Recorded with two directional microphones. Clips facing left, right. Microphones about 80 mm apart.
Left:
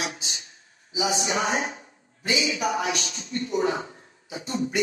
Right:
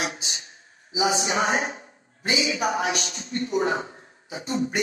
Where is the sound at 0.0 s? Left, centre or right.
Right.